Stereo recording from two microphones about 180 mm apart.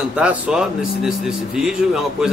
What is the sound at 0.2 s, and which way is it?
Speech, 5° right (ahead or behind).